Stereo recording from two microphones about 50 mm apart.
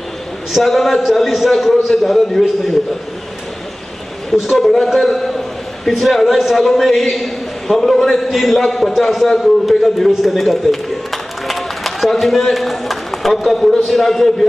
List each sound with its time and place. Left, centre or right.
0.5 s a man's voice: centre
4.3 s a man's voice: centre
9.4 s a sound: centre
13.5 s a man's voice: centre